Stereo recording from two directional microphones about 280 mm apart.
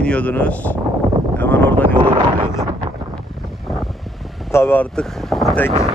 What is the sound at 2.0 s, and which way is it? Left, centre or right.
Wind noise, centre.